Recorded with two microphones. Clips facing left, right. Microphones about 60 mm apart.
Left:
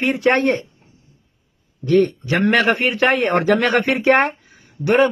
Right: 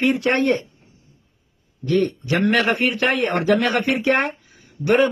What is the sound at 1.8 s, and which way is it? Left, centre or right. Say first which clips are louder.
Speech: left 4 dB; left.